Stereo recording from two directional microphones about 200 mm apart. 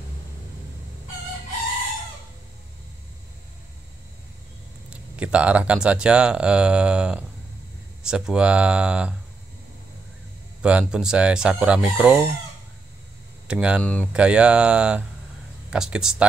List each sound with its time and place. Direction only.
4.8 s speech: 5° right (ahead or behind)
10.6 s speech: 5° right (ahead or behind)
11.8 s chicken: 5° right (ahead or behind)
13.5 s speech: 5° right (ahead or behind)